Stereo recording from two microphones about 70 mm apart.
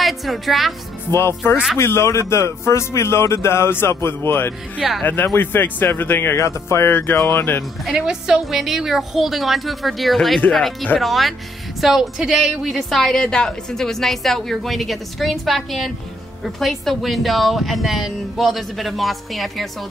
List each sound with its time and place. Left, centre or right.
0.0 s a woman's voice: centre
1.1 s a man's voice: left
6.9 s a man's voice: left
8.0 s a woman's voice: centre